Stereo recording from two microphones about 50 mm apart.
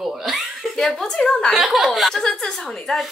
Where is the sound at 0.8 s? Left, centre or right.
Centre.